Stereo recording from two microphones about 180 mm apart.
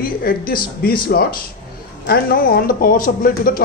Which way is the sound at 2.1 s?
55° left (ahead or behind).